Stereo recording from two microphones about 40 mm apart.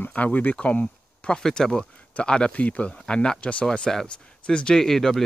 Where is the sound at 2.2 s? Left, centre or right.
Left.